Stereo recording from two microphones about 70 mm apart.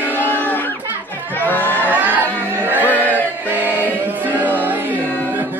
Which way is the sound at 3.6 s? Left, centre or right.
Right.